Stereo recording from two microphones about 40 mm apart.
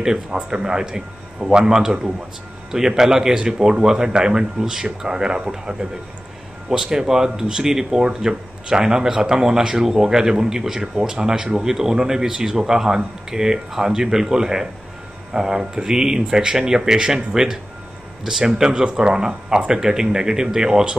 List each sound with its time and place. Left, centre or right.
0.0 s speech: centre